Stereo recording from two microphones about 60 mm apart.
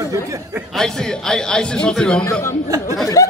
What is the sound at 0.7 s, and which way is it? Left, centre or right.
A man's voice, centre.